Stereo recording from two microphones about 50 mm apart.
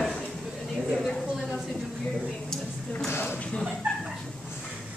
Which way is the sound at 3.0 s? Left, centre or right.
Left.